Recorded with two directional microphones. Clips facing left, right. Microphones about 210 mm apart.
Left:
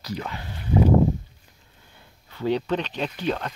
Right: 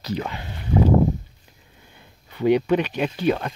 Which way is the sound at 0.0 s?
25° right (ahead or behind).